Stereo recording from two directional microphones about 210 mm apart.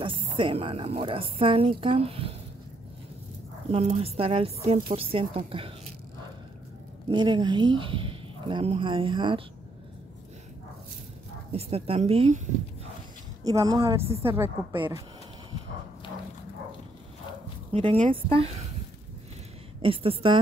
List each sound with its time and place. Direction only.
0.0 s a woman's voice: 25° right (ahead or behind)
3.7 s a woman's voice: 30° right (ahead or behind)
7.1 s a woman's voice: 20° right (ahead or behind)
11.5 s a woman's voice: 30° right (ahead or behind)
13.4 s a woman's voice: 15° right (ahead or behind)
17.7 s a woman's voice: 30° right (ahead or behind)
19.8 s a woman's voice: 25° right (ahead or behind)